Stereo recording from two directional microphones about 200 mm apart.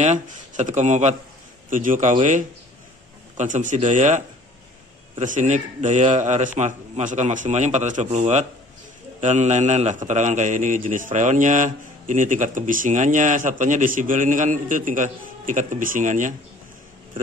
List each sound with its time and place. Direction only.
0.0 s a man's voice: 35° right (ahead or behind)
5.2 s a man's voice: 40° right (ahead or behind)